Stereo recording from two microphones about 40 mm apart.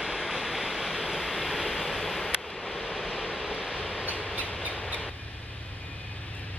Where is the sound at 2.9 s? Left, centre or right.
Centre.